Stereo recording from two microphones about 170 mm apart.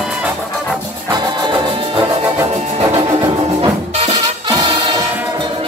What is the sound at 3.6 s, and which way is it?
Music, 35° right (ahead or behind).